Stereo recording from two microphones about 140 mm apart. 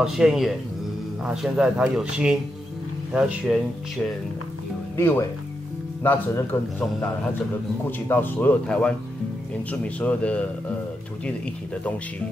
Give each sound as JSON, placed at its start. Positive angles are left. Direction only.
{"t": 0.0, "sound": "speech", "side_deg": -5}
{"t": 4.9, "sound": "a man's voice", "side_deg": 15}
{"t": 8.1, "sound": "a man's voice", "side_deg": 15}